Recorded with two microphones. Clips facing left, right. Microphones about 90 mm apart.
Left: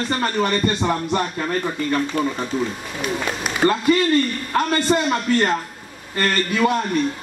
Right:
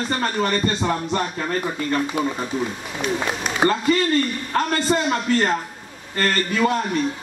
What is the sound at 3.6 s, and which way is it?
Speech, centre (ahead or behind).